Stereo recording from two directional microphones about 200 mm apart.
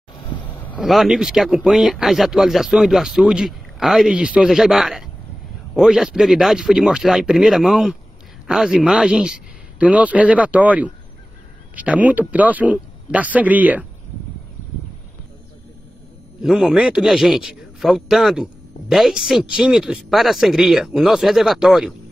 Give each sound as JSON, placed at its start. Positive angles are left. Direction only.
{"t": 0.1, "sound": "vehicle", "side_deg": 25}
{"t": 0.7, "sound": "a man's voice", "side_deg": 0}
{"t": 16.4, "sound": "a man's voice", "side_deg": 0}